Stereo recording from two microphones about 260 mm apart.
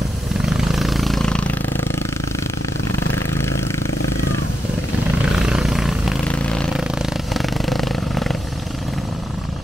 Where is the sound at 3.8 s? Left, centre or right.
Left.